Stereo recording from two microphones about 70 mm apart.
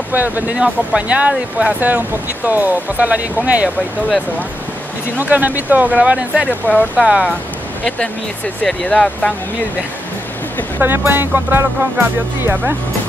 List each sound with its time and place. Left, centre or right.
0.1 s speech: right
5.1 s speech: right
6.5 s speech: left
7.1 s speech: centre
8.8 s speech: centre
10.8 s speech: right